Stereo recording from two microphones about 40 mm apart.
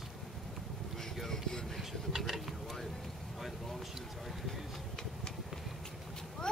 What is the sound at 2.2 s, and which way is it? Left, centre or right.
Vehicle, centre.